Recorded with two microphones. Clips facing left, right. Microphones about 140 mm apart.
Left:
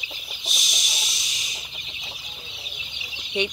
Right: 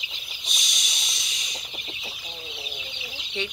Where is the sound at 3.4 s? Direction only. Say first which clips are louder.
Left 6 dB; 15° left (ahead or behind).